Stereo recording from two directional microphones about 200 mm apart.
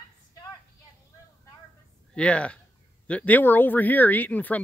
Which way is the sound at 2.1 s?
5° left (ahead or behind).